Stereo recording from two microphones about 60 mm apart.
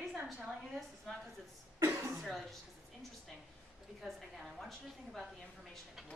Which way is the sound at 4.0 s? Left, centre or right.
Centre.